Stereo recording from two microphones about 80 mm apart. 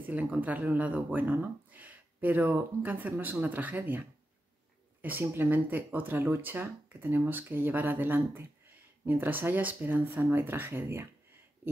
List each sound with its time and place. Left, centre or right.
0.0 s speech: right
5.2 s speech: right